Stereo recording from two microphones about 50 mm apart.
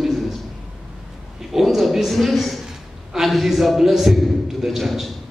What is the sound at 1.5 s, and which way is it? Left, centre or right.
A man's voice, centre.